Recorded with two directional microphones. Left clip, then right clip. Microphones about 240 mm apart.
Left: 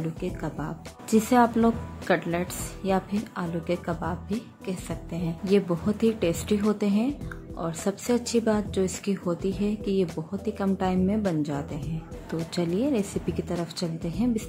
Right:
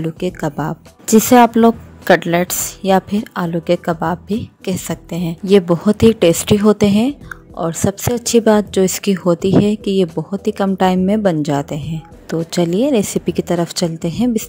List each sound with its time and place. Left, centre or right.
0.0 s speech: right